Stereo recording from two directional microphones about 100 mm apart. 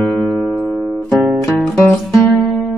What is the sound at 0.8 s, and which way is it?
Guitar, 5° left (ahead or behind).